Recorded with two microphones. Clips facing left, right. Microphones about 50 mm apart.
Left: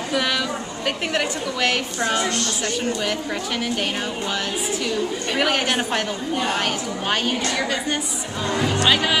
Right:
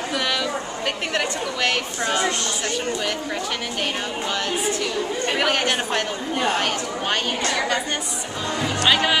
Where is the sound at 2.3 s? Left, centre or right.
Centre.